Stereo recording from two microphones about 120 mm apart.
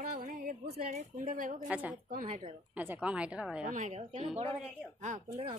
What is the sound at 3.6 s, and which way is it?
Speech, 90° right.